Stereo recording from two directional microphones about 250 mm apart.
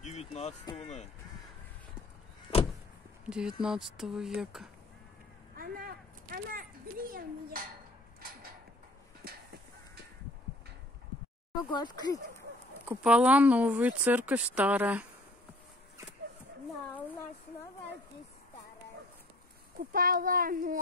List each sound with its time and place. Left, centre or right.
0.0 s a sound: left
3.3 s speech: centre
5.6 s a sound: right
11.7 s speech: centre
12.8 s speech: centre
19.8 s speech: right